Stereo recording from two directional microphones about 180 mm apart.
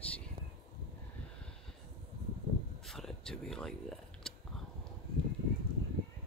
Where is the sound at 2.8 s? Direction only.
Centre (ahead or behind).